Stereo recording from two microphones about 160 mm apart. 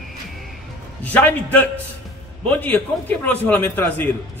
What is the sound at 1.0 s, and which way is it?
A man's voice, 10° left (ahead or behind).